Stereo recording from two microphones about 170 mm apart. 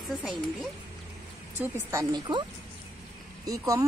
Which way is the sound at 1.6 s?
20° right (ahead or behind).